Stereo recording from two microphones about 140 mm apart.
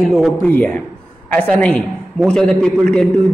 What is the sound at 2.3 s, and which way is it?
Speech, 5° left (ahead or behind).